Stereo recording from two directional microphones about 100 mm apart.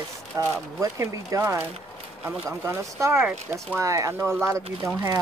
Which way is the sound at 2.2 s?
5° right (ahead or behind).